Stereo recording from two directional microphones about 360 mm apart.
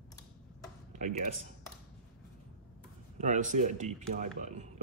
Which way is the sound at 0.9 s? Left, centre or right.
Centre.